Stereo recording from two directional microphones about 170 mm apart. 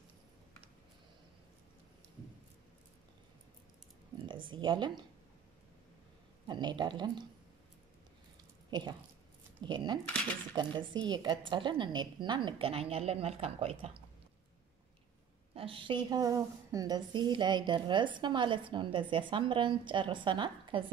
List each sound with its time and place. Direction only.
4.3 s speech: 30° right (ahead or behind)
6.4 s speech: 25° right (ahead or behind)
8.6 s a sound: 25° right (ahead or behind)
9.6 s a woman's voice: 25° right (ahead or behind)
15.5 s a woman's voice: 30° right (ahead or behind)